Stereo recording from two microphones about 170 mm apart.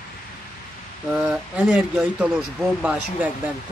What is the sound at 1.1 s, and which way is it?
Speech, 5° right (ahead or behind).